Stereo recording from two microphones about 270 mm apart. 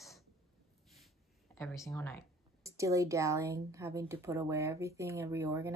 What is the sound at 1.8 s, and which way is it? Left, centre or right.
Speech, centre.